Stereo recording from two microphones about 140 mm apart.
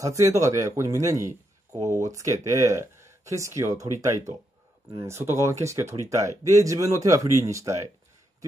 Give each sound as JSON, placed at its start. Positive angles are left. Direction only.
{"t": 0.0, "sound": "speech", "side_deg": -20}